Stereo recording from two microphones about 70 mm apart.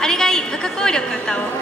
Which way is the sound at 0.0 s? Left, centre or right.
Centre.